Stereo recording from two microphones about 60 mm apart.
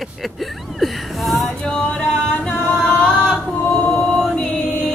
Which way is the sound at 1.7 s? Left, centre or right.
Centre.